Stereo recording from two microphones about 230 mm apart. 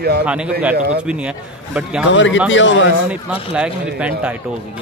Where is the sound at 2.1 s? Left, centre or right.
Left.